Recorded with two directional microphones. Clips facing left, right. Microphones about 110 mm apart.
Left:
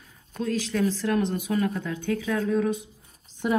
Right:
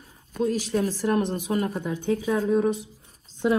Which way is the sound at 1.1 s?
35° right (ahead or behind).